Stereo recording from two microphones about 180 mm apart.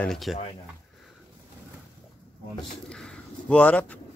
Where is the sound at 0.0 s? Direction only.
Centre (ahead or behind).